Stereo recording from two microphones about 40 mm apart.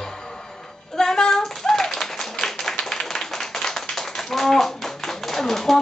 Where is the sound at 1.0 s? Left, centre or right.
Centre.